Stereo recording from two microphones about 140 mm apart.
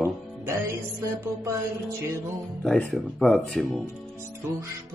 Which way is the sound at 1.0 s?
20° right (ahead or behind).